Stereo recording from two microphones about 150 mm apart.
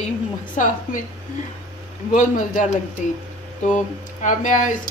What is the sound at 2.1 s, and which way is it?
Speech, 55° left (ahead or behind).